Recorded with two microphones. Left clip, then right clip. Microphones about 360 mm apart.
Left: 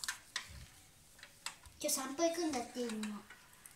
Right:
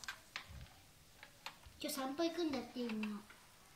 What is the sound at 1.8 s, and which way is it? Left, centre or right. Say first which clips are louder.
Speech: left 4 dB; centre.